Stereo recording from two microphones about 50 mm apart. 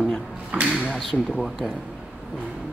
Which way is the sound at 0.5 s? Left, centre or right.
Right.